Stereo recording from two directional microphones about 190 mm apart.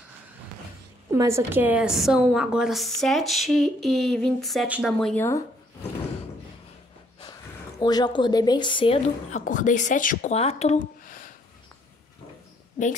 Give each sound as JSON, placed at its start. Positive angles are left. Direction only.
{"t": 1.1, "sound": "a woman's voice", "side_deg": -15}
{"t": 4.9, "sound": "speech", "side_deg": 5}
{"t": 7.8, "sound": "a woman's voice", "side_deg": 20}
{"t": 9.4, "sound": "speech", "side_deg": 45}